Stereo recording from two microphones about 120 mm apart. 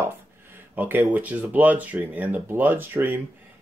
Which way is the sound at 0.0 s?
15° right (ahead or behind).